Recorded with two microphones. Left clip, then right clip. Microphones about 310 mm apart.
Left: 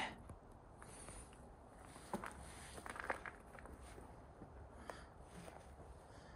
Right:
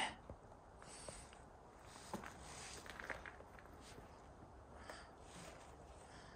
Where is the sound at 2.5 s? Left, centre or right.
Centre.